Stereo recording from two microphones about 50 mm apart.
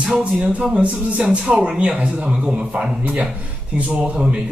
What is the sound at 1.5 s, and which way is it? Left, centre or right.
A man's voice, centre.